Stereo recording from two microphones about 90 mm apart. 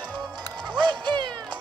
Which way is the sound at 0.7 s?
60° right (ahead or behind).